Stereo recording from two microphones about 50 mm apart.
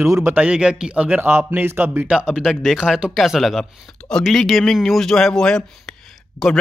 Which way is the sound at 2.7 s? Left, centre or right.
Centre.